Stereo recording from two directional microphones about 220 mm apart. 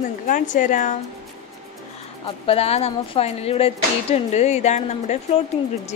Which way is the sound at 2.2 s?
25° left (ahead or behind).